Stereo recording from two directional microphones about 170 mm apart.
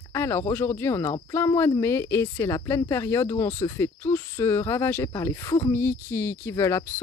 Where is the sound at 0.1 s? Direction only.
15° left (ahead or behind).